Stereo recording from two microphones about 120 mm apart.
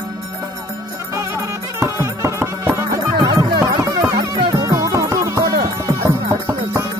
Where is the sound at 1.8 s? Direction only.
25° right (ahead or behind).